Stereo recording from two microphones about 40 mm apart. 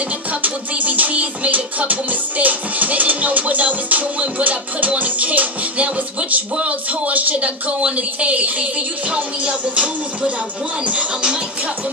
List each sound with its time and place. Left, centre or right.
0.3 s music: right
9.1 s music: right